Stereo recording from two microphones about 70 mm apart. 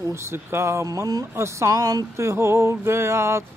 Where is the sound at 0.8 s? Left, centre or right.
Right.